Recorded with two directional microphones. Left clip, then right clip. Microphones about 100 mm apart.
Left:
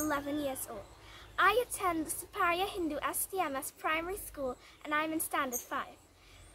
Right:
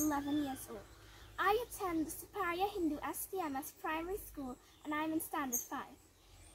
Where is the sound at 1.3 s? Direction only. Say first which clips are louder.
Left 6 dB; 35° left (ahead or behind).